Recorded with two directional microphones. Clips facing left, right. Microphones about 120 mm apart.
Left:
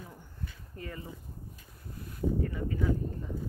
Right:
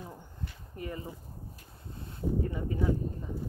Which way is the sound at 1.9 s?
25° right (ahead or behind).